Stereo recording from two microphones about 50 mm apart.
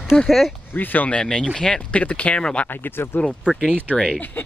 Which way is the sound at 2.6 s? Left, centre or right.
Left.